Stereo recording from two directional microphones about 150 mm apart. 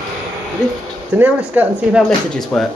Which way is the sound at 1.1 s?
10° right (ahead or behind).